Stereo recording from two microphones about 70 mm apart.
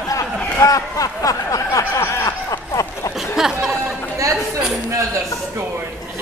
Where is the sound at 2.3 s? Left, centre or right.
Left.